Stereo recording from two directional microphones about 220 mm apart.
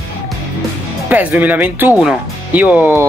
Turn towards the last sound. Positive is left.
turn(degrees=-10)  # may be behind; listen again after turning